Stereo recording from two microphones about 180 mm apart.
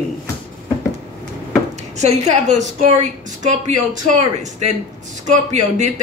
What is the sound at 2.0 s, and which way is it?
A woman's voice, 40° right (ahead or behind).